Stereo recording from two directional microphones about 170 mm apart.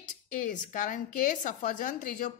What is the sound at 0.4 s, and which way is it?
A woman's voice, 50° left (ahead or behind).